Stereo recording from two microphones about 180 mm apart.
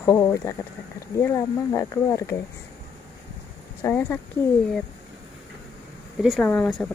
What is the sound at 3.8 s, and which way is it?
Speech, 10° left (ahead or behind).